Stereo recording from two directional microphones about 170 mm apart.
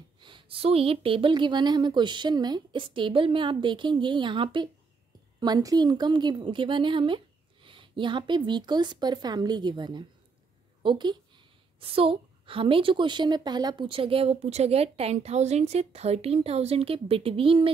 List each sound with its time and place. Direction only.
0.2 s a woman's voice: 30° right (ahead or behind)